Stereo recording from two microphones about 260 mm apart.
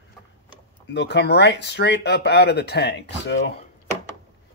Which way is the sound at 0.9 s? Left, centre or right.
Left.